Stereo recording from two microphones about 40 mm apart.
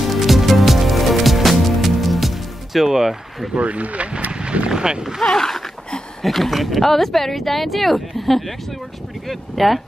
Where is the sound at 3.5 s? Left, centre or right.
Right.